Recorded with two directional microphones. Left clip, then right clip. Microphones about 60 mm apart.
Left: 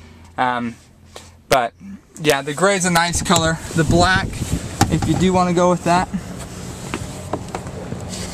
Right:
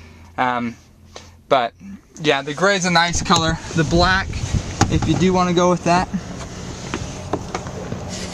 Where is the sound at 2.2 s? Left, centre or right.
Centre.